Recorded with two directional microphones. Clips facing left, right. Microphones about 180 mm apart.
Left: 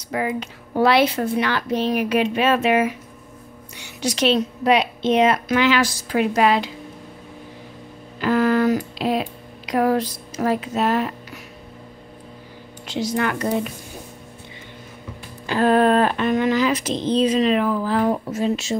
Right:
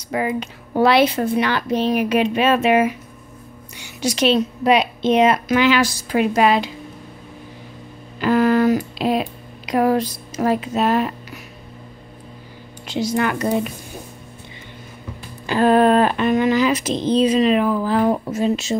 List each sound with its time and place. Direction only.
0.1 s speech: 20° right (ahead or behind)
4.0 s speech: 10° right (ahead or behind)
8.2 s speech: 15° right (ahead or behind)
12.8 s speech: 10° right (ahead or behind)
15.4 s speech: 15° right (ahead or behind)